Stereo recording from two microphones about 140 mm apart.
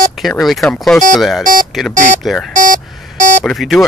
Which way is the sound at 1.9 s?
60° right (ahead or behind).